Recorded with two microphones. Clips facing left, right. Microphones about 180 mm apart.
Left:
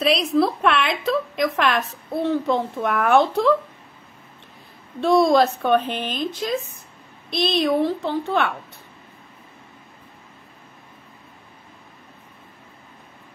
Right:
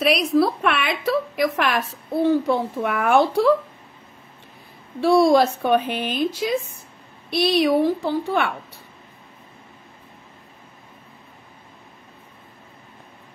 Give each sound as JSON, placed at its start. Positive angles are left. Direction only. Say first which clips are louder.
{"t": 0.0, "sound": "a woman's voice", "louder": "right 1 dB", "side_deg": -5}
{"t": 5.0, "sound": "a woman's voice", "louder": "right 1 dB", "side_deg": -10}